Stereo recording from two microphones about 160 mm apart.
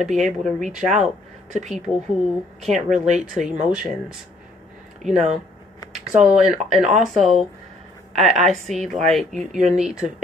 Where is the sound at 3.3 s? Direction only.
5° right (ahead or behind).